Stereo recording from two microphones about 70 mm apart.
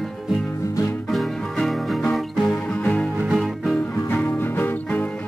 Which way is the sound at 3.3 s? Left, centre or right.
Centre.